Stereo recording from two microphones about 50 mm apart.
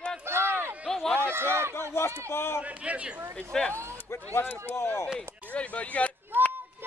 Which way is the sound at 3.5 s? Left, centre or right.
Centre.